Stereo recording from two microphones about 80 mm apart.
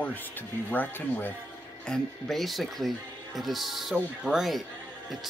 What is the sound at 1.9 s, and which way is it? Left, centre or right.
Speech, centre.